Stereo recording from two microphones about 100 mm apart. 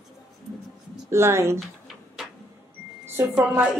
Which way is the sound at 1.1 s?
25° right (ahead or behind).